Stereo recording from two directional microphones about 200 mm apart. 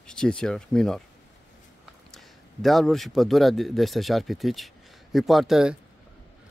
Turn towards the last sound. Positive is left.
turn(degrees=0)  # may be behind; listen again after turning